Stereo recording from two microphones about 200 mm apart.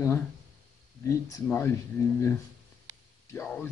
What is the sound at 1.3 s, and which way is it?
Speech, 15° left (ahead or behind).